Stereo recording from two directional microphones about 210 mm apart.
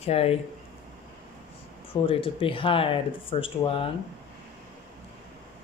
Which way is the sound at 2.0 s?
25° left (ahead or behind).